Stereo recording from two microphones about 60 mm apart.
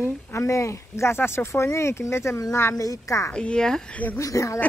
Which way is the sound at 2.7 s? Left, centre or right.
Left.